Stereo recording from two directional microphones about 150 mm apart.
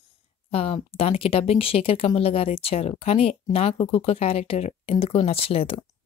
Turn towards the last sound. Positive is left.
turn(degrees=40)  # may be behind; listen again after turning